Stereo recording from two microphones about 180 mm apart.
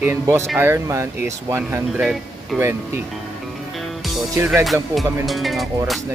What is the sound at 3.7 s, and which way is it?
Music, centre (ahead or behind).